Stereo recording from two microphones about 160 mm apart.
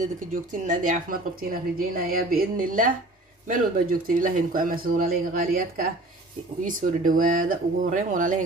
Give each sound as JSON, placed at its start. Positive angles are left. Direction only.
{"t": 0.0, "sound": "speech", "side_deg": -55}